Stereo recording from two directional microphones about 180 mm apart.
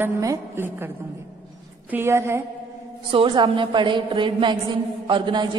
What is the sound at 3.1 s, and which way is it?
A woman's voice, 30° right (ahead or behind).